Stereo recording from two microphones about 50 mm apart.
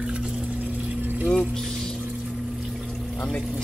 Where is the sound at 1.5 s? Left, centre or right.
Centre.